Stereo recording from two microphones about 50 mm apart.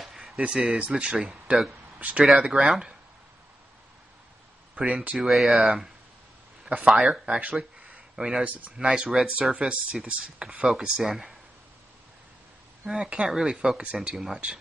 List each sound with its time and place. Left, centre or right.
0.1 s speech: centre
1.1 s speech: centre
2.0 s speech: right
2.3 s speech: centre
4.7 s speech: right
5.2 s speech: centre
6.7 s a sound: right
7.1 s speech: right
8.2 s speech: centre
8.5 s speech: right; by 11.3 s centre
12.8 s speech: centre